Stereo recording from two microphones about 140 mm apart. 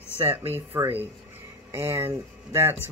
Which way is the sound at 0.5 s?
15° right (ahead or behind).